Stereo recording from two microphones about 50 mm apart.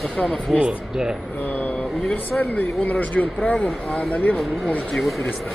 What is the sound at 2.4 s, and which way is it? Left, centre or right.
Speech, left.